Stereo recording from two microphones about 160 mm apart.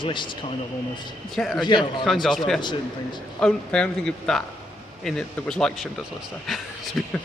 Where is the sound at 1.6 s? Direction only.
30° left (ahead or behind).